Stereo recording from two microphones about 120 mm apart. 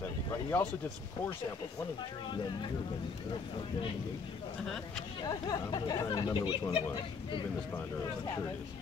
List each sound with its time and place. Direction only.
0.3 s speech: 20° left (ahead or behind)
5.5 s speech: 35° left (ahead or behind)